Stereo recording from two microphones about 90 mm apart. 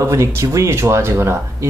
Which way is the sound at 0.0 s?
30° right (ahead or behind).